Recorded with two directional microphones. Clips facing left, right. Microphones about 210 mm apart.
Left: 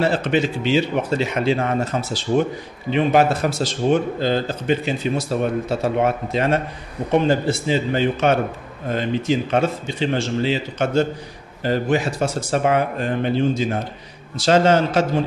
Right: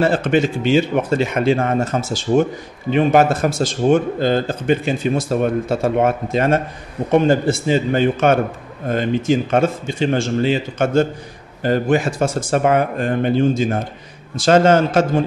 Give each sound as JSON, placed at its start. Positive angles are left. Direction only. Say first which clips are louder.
{"t": 0.0, "sound": "speech", "louder": "right 3 dB", "side_deg": -50}